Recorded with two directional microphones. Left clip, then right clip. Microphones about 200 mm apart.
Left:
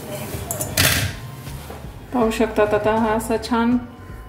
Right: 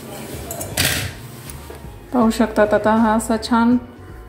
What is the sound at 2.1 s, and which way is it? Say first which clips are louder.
A woman's voice: right 2 dB; 30° right (ahead or behind).